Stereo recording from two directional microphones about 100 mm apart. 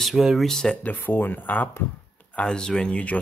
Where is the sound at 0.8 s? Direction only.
20° left (ahead or behind).